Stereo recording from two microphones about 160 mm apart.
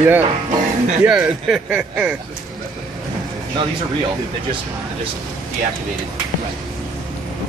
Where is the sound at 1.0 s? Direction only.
5° right (ahead or behind).